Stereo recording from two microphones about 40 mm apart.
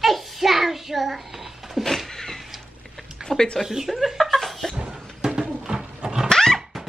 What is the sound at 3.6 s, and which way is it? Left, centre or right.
Speech, centre.